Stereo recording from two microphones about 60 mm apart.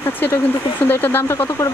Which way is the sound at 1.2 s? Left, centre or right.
Left.